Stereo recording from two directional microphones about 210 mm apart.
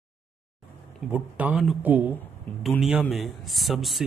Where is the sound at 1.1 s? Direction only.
5° right (ahead or behind).